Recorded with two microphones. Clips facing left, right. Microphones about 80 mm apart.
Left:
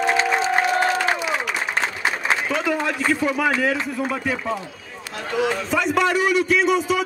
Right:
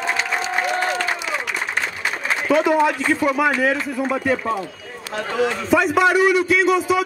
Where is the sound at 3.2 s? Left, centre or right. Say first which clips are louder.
Right 4 dB; centre.